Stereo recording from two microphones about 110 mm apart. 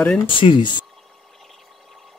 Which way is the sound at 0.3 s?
50° left (ahead or behind).